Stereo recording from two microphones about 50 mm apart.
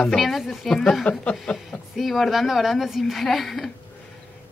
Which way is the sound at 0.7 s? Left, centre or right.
Centre.